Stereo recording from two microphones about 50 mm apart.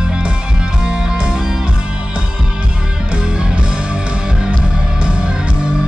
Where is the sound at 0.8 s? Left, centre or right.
Centre.